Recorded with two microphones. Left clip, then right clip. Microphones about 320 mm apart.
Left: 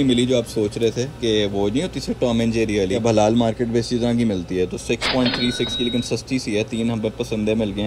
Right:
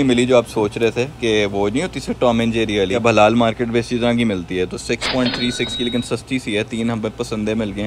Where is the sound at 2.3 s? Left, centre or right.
Centre.